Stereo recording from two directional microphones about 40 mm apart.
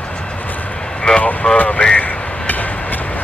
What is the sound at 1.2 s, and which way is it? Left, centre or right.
Vehicle, left.